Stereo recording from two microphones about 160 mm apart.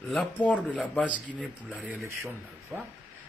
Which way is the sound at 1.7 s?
10° right (ahead or behind).